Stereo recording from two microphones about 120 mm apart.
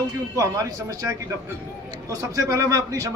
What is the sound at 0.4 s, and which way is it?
A man's voice, 30° right (ahead or behind).